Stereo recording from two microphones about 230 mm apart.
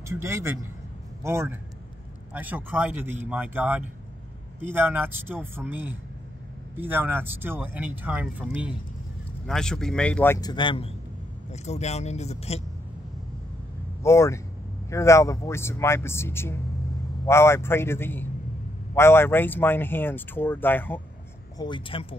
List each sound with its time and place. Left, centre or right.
0.1 s speech: centre; by 12.6 s left
14.0 s speech: centre
21.5 s speech: centre